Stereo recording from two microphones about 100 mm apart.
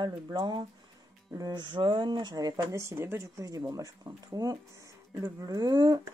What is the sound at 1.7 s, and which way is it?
Speech, 55° right (ahead or behind).